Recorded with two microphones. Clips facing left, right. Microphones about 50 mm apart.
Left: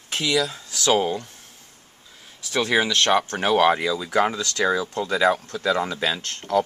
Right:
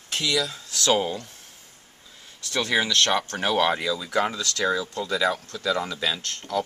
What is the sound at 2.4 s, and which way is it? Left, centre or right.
Speech, centre.